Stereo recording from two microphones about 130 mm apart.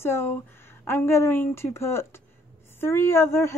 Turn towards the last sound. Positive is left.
turn(degrees=20)  # may be behind; listen again after turning